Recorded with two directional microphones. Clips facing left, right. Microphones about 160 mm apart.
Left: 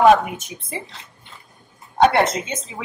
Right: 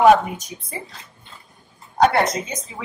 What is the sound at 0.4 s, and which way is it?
Speech, 25° left (ahead or behind).